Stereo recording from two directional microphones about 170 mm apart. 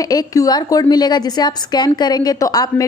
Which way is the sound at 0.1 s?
20° left (ahead or behind).